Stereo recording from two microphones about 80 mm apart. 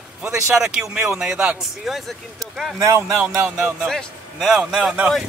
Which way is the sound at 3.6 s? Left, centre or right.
Centre.